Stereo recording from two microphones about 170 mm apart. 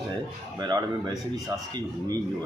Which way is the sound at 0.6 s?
25° right (ahead or behind).